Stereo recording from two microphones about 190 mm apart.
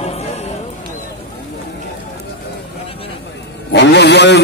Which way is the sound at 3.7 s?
65° left (ahead or behind).